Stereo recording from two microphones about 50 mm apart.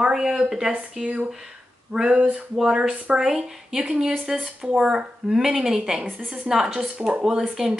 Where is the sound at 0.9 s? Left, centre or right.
Right.